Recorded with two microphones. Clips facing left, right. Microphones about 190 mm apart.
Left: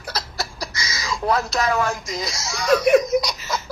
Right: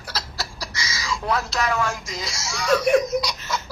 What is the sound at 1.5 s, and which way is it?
Speech, 35° left (ahead or behind).